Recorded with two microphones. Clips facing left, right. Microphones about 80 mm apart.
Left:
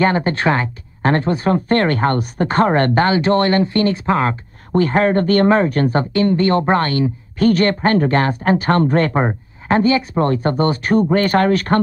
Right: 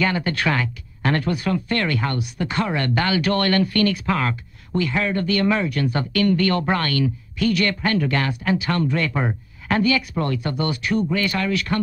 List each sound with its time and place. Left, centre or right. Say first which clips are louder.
0.0 s speech: left 6 dB; left